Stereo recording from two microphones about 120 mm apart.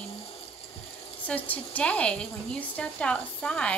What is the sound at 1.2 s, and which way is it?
A woman's voice, 10° left (ahead or behind).